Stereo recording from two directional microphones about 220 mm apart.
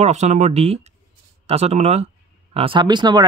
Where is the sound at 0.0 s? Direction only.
30° right (ahead or behind).